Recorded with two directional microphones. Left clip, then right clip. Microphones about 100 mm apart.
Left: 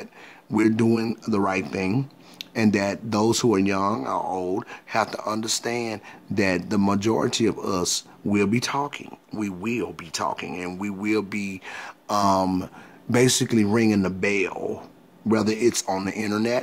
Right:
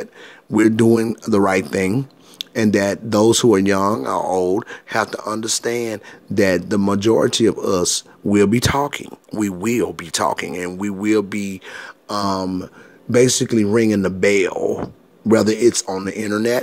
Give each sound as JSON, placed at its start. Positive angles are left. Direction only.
{"t": 0.6, "sound": "speech", "side_deg": -20}
{"t": 1.2, "sound": "speech", "side_deg": -35}
{"t": 1.9, "sound": "speech", "side_deg": -20}
{"t": 5.0, "sound": "speech", "side_deg": -15}
{"t": 10.8, "sound": "speech", "side_deg": -25}
{"t": 11.7, "sound": "speech", "side_deg": -5}
{"t": 13.7, "sound": "speech", "side_deg": -20}
{"t": 14.3, "sound": "speech", "side_deg": -35}
{"t": 15.2, "sound": "speech", "side_deg": -25}